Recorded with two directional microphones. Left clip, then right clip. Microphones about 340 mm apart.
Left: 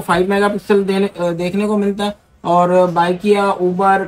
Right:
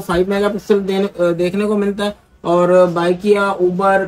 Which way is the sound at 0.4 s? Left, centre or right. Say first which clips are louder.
Left 1 dB; left.